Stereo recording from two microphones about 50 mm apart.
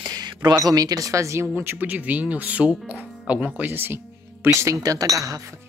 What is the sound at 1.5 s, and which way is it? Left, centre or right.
Speech, right.